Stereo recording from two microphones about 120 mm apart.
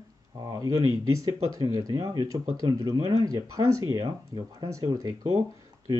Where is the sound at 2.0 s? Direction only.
30° right (ahead or behind).